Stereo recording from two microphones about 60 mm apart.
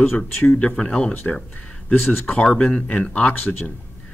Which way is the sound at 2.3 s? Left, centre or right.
Centre.